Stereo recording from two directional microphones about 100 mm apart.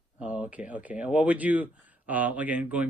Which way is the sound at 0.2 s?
15° right (ahead or behind).